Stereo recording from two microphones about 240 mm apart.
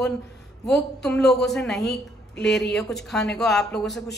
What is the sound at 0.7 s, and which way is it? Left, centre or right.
A woman's voice, centre.